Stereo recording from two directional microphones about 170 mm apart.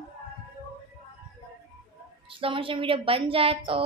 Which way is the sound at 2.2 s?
30° right (ahead or behind).